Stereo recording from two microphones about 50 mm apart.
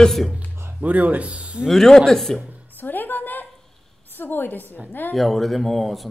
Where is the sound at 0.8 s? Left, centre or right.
Right.